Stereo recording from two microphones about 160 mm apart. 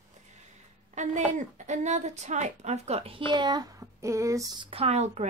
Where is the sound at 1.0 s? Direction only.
50° right (ahead or behind).